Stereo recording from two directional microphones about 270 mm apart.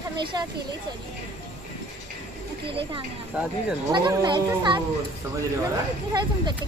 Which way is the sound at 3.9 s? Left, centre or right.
Centre.